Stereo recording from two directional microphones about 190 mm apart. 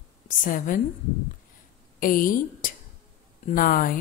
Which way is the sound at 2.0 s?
45° left (ahead or behind).